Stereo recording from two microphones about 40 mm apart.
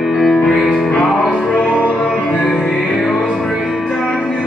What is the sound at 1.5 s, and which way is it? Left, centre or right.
Music, left.